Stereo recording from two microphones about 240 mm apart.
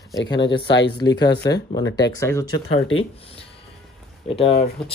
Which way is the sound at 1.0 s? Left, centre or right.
Centre.